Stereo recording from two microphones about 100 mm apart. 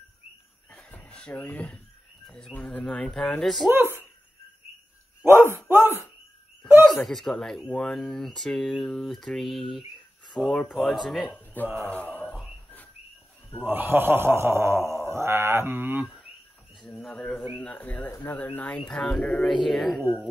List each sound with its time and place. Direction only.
0.7 s a sound: 15° left (ahead or behind)
2.2 s speech: 10° left (ahead or behind)
3.6 s a man's voice: 20° right (ahead or behind)
5.2 s a sound: 25° right (ahead or behind)
6.9 s speech: centre (ahead or behind)
11.6 s a man's voice: 20° right (ahead or behind)
11.9 s a sound: 15° left (ahead or behind)
13.7 s a man's voice: 20° right (ahead or behind)
16.8 s speech: 10° left (ahead or behind)